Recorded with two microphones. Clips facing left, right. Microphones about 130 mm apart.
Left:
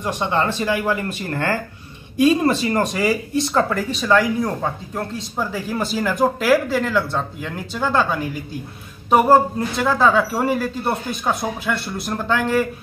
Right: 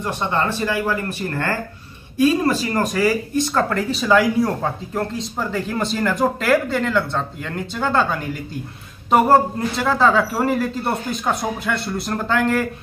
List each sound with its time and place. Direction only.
0.0 s speech: 15° left (ahead or behind)
2.4 s speech: 25° left (ahead or behind)
3.7 s speech: 5° right (ahead or behind)